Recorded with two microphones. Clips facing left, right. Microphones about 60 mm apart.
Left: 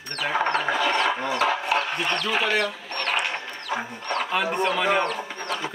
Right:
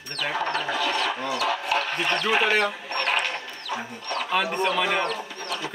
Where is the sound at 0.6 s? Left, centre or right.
Left; by 2.0 s centre.